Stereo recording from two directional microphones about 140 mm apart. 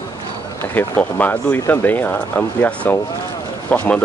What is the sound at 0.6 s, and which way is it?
Speech, 15° left (ahead or behind).